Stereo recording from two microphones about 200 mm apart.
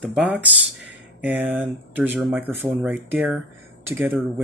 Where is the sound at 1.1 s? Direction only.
5° right (ahead or behind).